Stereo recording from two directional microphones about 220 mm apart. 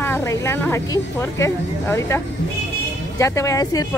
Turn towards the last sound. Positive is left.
turn(degrees=15)  # may be behind; listen again after turning